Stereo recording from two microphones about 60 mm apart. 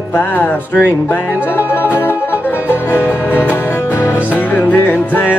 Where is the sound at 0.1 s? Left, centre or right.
Left.